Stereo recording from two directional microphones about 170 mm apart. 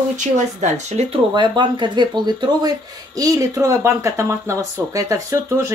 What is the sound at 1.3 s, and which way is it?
Speech, 25° right (ahead or behind).